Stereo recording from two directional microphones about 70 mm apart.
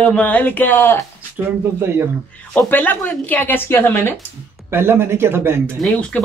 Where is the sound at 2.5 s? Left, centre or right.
Left.